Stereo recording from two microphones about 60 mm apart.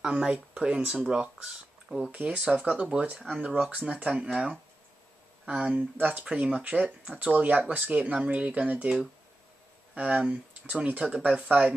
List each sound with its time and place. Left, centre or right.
0.0 s speech: centre
5.9 s speech: right
9.9 s speech: right